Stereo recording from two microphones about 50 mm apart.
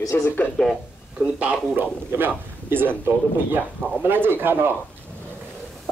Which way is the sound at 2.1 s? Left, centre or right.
Right.